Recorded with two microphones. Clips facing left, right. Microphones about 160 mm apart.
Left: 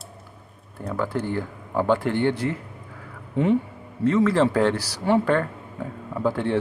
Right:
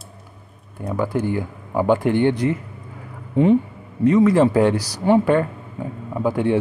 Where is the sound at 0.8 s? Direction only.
15° right (ahead or behind).